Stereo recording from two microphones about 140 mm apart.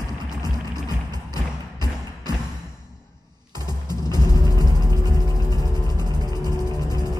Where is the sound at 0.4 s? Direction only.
30° right (ahead or behind).